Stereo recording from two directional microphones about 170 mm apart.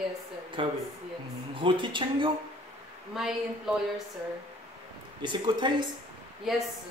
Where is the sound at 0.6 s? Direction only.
30° right (ahead or behind).